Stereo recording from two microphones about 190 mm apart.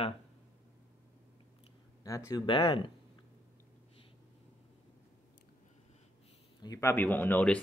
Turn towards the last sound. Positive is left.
turn(degrees=10)  # may be behind; listen again after turning